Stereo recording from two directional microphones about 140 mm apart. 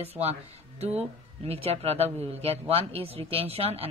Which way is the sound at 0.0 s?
45° right (ahead or behind).